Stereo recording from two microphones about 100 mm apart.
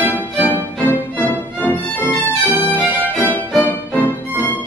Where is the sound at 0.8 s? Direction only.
20° left (ahead or behind).